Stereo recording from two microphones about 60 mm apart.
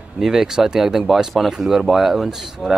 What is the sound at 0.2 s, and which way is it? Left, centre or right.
Speech, centre.